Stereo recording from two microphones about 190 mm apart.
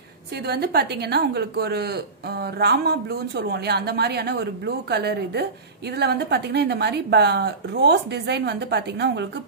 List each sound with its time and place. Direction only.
0.4 s a woman's voice: 55° right (ahead or behind)